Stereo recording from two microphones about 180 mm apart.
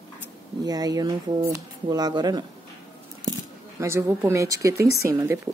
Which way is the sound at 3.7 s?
15° right (ahead or behind).